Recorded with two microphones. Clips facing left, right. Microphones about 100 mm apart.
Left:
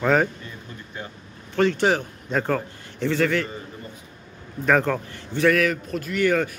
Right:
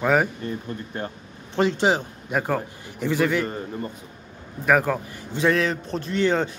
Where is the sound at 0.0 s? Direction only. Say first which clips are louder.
Even; 10° right (ahead or behind).